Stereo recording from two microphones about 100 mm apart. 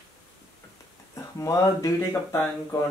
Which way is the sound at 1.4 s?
35° left (ahead or behind).